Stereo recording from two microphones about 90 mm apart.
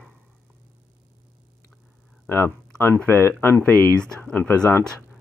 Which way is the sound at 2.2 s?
25° left (ahead or behind).